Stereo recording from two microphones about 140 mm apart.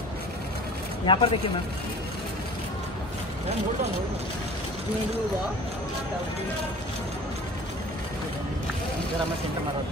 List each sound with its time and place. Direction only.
1.0 s speech: 35° left (ahead or behind)